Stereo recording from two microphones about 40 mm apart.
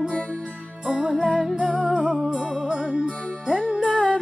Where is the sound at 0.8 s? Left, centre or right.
Right.